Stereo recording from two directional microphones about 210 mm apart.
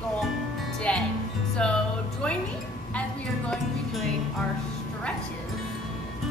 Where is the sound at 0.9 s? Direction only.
5° left (ahead or behind).